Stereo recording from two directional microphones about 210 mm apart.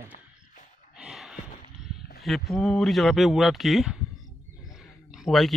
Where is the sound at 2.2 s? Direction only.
Centre (ahead or behind).